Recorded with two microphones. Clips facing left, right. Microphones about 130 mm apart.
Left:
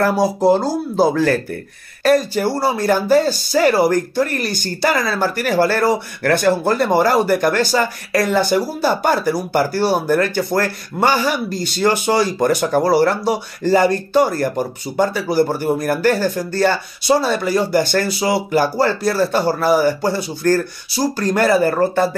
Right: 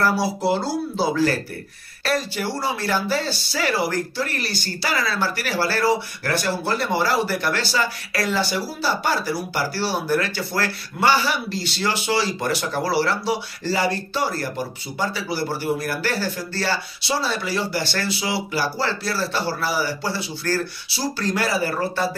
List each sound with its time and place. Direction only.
0.0 s speech: 45° left (ahead or behind)